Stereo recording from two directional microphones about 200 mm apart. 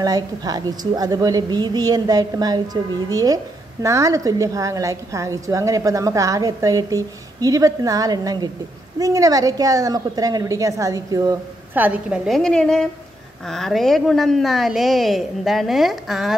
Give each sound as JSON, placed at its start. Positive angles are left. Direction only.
{"t": 0.0, "sound": "a woman's voice", "side_deg": -20}